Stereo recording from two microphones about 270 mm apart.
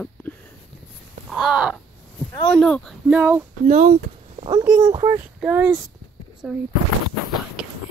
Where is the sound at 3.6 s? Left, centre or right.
Right.